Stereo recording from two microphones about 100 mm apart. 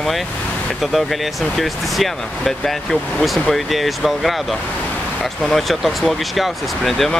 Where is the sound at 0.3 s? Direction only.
10° left (ahead or behind).